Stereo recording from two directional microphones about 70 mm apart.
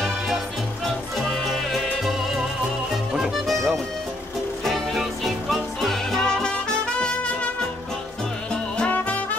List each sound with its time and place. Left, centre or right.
0.8 s music: centre
3.4 s music: centre
8.7 s music: centre